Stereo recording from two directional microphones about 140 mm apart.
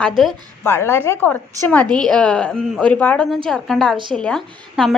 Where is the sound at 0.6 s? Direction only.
20° left (ahead or behind).